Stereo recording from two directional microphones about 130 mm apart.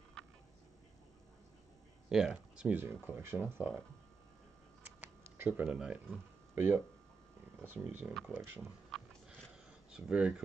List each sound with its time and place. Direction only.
2.0 s speech: 5° right (ahead or behind)
5.0 s tick-tock: 15° right (ahead or behind)
6.5 s speech: 15° right (ahead or behind)
9.8 s speech: 5° right (ahead or behind)